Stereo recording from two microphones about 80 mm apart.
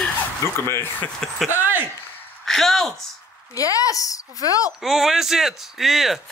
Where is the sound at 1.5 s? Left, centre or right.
Right.